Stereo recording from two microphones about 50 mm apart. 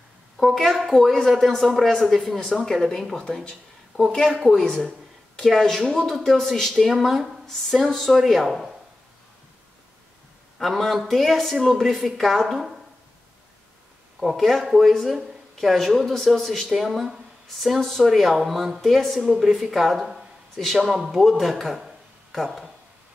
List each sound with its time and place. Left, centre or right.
0.4 s a woman's voice: centre
0.9 s speech: centre
1.4 s speech: centre
10.6 s speech: centre
14.2 s speech: centre